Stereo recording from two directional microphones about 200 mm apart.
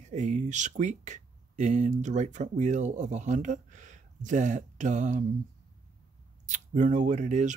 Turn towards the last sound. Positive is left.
turn(degrees=-35)  # may be behind; listen again after turning